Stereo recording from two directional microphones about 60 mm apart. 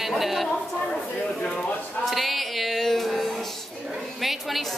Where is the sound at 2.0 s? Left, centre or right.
Centre.